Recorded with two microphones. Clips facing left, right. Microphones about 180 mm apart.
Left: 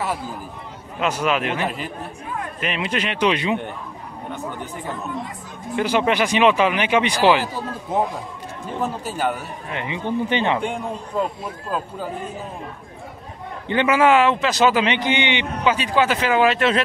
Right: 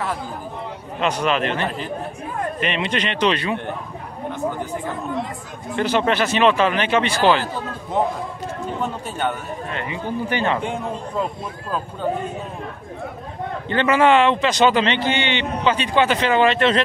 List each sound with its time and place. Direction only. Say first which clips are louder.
1.0 s a man's voice: right 1 dB; 5° left (ahead or behind)
5.8 s a man's voice: even; 10° left (ahead or behind)
9.0 s a man's voice: left 1 dB; 5° left (ahead or behind)
9.7 s a man's voice: left 3 dB; 20° left (ahead or behind)
13.7 s a man's voice: even; 10° left (ahead or behind)